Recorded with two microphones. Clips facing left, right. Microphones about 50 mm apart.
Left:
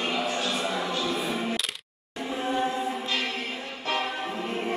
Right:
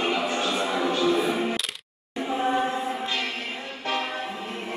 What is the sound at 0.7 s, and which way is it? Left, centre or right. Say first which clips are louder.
Music: right 5 dB; centre.